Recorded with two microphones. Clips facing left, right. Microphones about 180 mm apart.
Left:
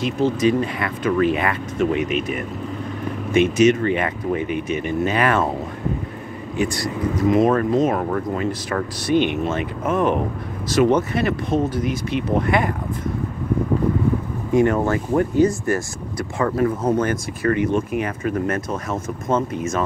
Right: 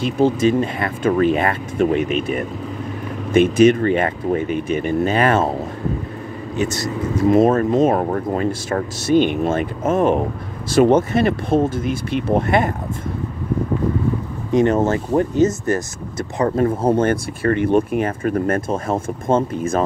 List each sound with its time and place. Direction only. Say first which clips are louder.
0.0 s speech: right 2 dB; 30° right (ahead or behind)
3.5 s speech: right 3 dB; 35° right (ahead or behind)
6.5 s speech: right 1 dB; 25° right (ahead or behind)
8.5 s speech: right 2 dB; 25° right (ahead or behind)
9.1 s speech: right 3 dB; 40° right (ahead or behind)
9.8 s speech: right 3 dB; 30° right (ahead or behind)
14.5 s speech: right 2 dB; 20° right (ahead or behind); by 18.6 s 45° right (ahead or behind)
18.7 s speech: right 4 dB; 30° right (ahead or behind)